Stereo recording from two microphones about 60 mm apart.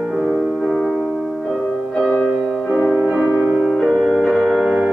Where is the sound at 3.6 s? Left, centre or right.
Centre.